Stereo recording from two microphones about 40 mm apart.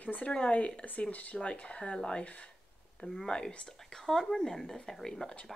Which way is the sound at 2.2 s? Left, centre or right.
Left.